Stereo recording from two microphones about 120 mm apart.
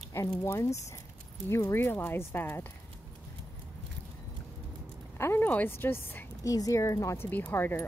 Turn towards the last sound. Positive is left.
turn(degrees=15)  # may be behind; listen again after turning